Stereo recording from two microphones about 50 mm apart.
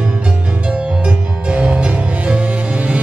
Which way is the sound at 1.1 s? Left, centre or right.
Right.